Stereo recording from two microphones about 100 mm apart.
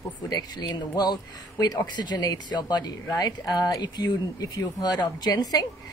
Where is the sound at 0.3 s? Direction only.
45° left (ahead or behind).